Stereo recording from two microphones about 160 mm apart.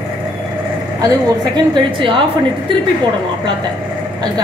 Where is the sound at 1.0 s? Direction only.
30° right (ahead or behind).